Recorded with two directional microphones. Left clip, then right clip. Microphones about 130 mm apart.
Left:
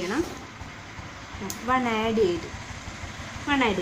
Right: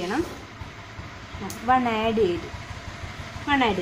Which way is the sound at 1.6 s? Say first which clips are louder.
Right 3 dB; 25° right (ahead or behind).